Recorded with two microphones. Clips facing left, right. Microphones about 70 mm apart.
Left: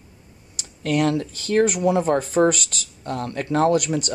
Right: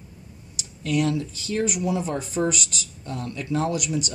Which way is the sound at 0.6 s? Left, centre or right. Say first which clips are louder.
Left 3 dB; left.